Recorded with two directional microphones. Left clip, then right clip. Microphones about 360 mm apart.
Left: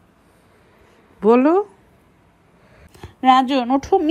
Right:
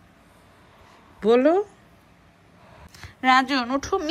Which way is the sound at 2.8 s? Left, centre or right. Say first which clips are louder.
Left 4 dB; centre.